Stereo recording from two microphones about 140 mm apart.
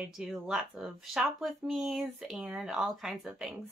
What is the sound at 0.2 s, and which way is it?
Speech, centre (ahead or behind).